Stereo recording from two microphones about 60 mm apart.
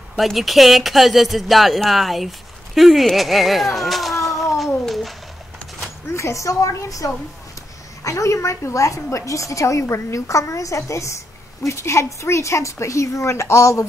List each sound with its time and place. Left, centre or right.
0.2 s speech: centre
4.8 s a sound: centre
6.1 s a woman's voice: left